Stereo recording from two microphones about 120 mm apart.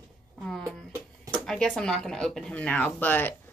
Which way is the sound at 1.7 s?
5° left (ahead or behind).